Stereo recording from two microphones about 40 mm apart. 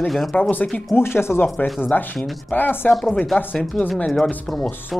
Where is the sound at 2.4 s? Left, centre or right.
Left.